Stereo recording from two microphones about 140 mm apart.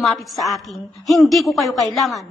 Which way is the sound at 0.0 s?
Centre (ahead or behind).